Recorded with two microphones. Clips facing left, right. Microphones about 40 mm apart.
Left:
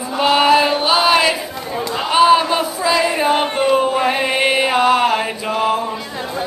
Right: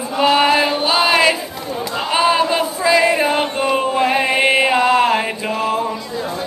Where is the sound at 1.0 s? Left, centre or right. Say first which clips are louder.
Even; centre.